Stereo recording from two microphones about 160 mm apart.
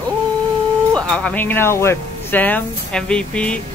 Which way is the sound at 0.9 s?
5° left (ahead or behind).